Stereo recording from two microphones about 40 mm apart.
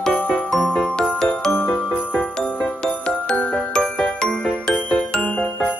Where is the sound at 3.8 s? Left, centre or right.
Left.